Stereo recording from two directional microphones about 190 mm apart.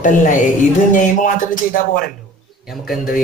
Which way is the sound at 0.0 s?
45° left (ahead or behind).